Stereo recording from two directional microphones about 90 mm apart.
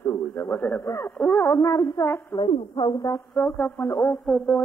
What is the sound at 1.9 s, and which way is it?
Speech, 40° left (ahead or behind).